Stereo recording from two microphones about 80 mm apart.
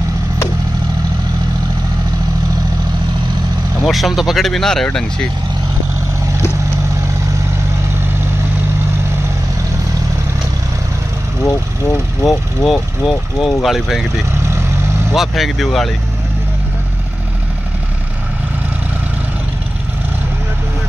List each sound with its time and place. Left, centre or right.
3.8 s speech: centre
11.4 s speech: left
12.6 s speech: centre